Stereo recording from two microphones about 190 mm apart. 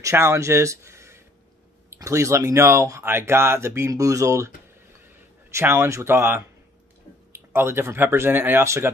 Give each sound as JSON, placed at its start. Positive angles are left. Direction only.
{"t": 0.0, "sound": "speech", "side_deg": -15}
{"t": 5.5, "sound": "speech", "side_deg": -15}
{"t": 7.5, "sound": "speech", "side_deg": -15}